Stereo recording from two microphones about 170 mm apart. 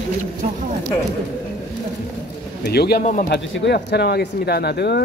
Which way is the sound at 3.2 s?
90° left.